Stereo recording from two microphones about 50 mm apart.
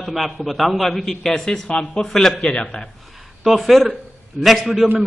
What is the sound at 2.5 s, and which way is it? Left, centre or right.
Speech, left.